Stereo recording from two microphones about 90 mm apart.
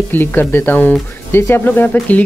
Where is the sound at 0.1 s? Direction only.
25° left (ahead or behind).